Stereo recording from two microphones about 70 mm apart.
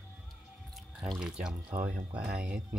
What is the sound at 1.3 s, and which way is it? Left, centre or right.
Speech, centre.